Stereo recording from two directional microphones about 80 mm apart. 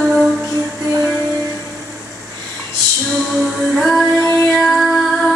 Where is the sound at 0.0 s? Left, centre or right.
Centre.